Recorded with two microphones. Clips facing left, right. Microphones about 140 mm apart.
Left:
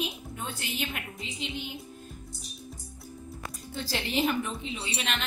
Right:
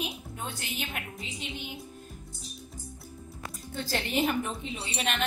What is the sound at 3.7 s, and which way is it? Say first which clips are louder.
A woman's voice: right 1 dB; 50° right (ahead or behind).